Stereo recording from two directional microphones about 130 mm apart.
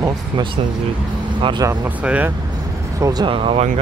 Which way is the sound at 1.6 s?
25° right (ahead or behind).